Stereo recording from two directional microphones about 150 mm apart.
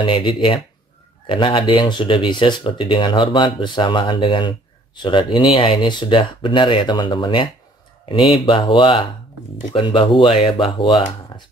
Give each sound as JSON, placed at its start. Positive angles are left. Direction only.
{"t": 0.0, "sound": "speech", "side_deg": 35}